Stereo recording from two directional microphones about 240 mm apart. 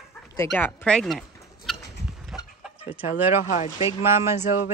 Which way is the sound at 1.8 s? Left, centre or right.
Left.